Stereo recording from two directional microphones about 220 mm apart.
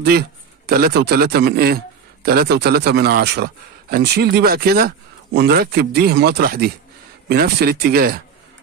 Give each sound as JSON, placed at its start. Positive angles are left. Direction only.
{"t": 0.0, "sound": "a man's voice", "side_deg": -45}